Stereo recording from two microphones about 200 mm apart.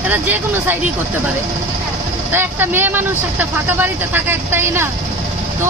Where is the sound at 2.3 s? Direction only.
10° right (ahead or behind).